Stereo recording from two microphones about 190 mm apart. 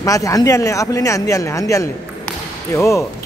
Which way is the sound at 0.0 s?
15° left (ahead or behind).